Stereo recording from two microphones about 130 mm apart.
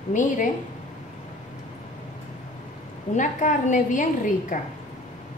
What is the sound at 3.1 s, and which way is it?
A woman's voice, 80° left.